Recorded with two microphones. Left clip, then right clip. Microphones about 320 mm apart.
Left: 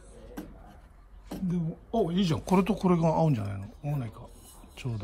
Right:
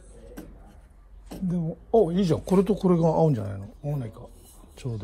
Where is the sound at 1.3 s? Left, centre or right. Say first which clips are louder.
Right 3 dB; centre.